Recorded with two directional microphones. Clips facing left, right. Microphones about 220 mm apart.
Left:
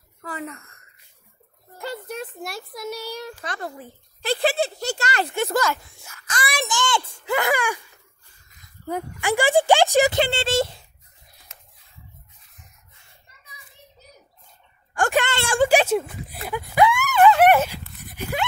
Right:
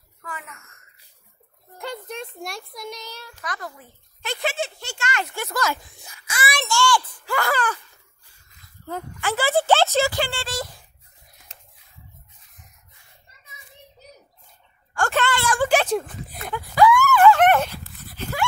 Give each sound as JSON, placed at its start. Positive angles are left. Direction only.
{"t": 0.2, "sound": "a woman's voice", "side_deg": 35}
{"t": 1.8, "sound": "speech", "side_deg": 5}
{"t": 3.3, "sound": "speech", "side_deg": 30}
{"t": 5.3, "sound": "a child's voice", "side_deg": 25}
{"t": 5.8, "sound": "a sound", "side_deg": -15}
{"t": 6.5, "sound": "a child's voice", "side_deg": 15}
{"t": 8.8, "sound": "speech", "side_deg": 15}
{"t": 11.5, "sound": "a sound", "side_deg": -30}
{"t": 15.0, "sound": "speech", "side_deg": 15}
{"t": 15.3, "sound": "a child's voice", "side_deg": 25}
{"t": 15.6, "sound": "speech", "side_deg": 10}
{"t": 16.7, "sound": "a sound", "side_deg": 20}
{"t": 17.4, "sound": "dog", "side_deg": 10}